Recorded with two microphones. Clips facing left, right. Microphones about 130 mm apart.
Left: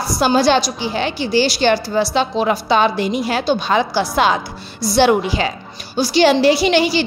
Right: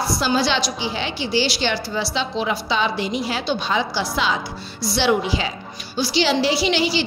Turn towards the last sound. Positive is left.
turn(degrees=50)  # may be behind; listen again after turning